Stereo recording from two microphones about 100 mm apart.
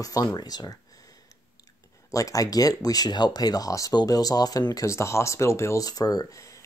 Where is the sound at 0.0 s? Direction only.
35° left (ahead or behind).